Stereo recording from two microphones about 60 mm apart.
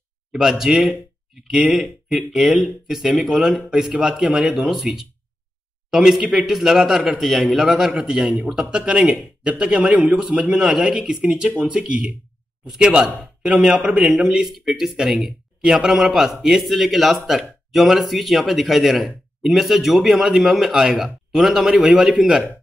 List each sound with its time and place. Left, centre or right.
0.3 s a man's voice: centre
3.1 s a man's voice: centre